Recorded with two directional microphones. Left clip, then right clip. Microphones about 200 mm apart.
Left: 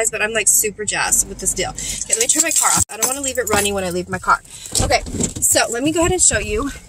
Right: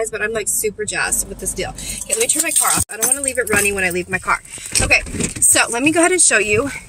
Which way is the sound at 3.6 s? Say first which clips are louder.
Right 3 dB; 25° right (ahead or behind).